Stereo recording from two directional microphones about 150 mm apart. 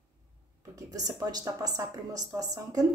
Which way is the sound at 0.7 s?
25° right (ahead or behind).